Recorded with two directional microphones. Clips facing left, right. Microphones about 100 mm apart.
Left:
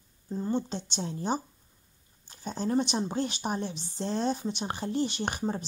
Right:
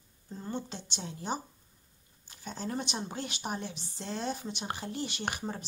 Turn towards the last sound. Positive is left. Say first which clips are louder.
# left 5 dB
turn(degrees=30)  # may be behind; listen again after turning